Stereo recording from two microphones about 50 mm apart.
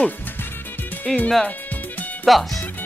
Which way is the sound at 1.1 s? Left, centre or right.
Centre.